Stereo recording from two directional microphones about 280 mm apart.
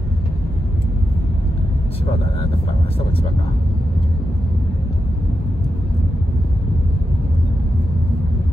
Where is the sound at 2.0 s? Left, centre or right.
Centre.